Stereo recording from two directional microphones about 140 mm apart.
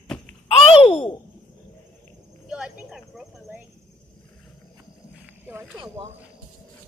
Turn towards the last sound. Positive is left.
turn(degrees=-30)  # may be behind; listen again after turning